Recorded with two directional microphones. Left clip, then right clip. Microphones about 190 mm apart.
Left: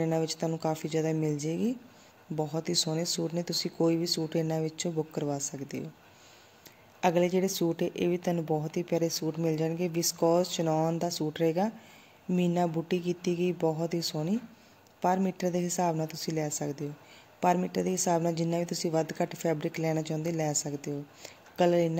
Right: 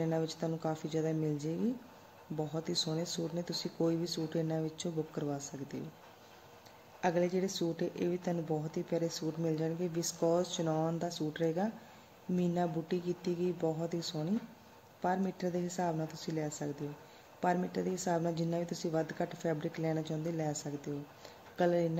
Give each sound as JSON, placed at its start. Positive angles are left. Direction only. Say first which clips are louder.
{"t": 0.0, "sound": "a woman's voice", "louder": "left 5 dB", "side_deg": 10}
{"t": 7.0, "sound": "a woman's voice", "louder": "left 6 dB", "side_deg": 20}